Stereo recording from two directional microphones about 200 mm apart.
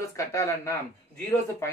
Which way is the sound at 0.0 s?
15° left (ahead or behind).